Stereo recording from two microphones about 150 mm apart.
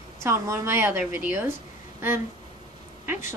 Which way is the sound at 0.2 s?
20° right (ahead or behind).